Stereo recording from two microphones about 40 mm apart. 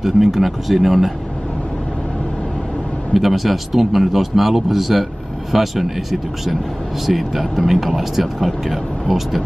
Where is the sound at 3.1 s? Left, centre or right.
Centre.